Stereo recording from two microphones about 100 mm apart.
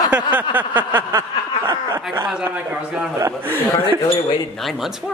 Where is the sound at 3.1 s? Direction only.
25° right (ahead or behind).